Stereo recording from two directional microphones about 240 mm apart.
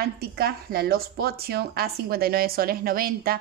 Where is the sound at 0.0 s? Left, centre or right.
Right.